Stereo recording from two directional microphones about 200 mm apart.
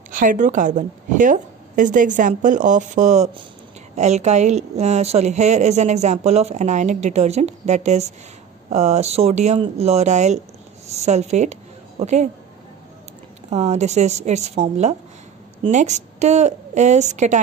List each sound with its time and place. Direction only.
0.1 s speech: 40° right (ahead or behind)
13.5 s a woman's voice: 35° right (ahead or behind)